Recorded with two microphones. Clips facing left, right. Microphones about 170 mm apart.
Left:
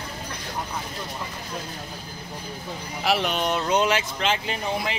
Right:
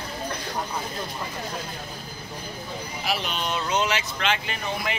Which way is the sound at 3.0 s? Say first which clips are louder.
Left 6 dB; 60° left (ahead or behind).